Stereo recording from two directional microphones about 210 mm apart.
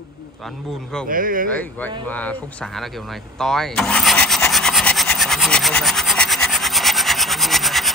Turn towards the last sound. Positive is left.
turn(degrees=0)  # may be behind; listen again after turning